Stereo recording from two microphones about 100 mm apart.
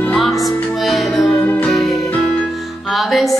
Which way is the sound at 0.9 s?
Centre (ahead or behind).